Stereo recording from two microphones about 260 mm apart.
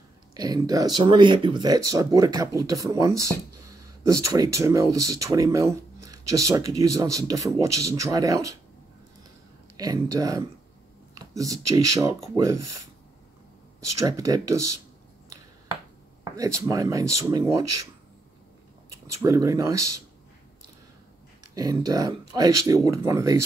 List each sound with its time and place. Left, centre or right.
0.3 s speech: centre
9.8 s speech: centre
11.1 s a sound: centre
11.9 s speech: centre
13.9 s speech: centre
16.3 s speech: centre
18.9 s a sound: right
19.2 s speech: centre
21.5 s speech: centre